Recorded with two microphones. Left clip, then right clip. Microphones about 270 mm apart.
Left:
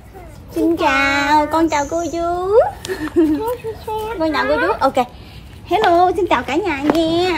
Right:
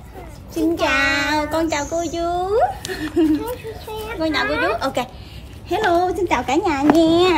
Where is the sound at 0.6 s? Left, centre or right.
Centre.